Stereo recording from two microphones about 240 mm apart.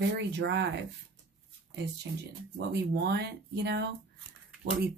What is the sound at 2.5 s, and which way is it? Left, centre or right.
A woman's voice, right.